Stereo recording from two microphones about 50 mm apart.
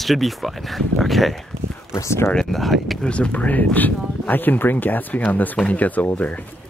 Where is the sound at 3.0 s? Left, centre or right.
Left.